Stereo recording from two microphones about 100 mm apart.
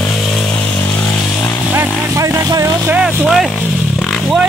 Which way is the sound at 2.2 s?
30° right (ahead or behind).